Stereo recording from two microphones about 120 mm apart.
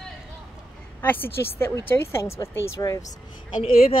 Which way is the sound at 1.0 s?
15° left (ahead or behind).